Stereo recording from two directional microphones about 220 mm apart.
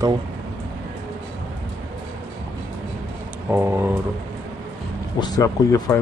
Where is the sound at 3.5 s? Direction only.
10° right (ahead or behind).